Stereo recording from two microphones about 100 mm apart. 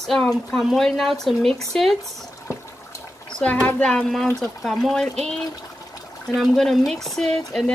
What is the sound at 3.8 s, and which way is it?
Speech, 5° left (ahead or behind).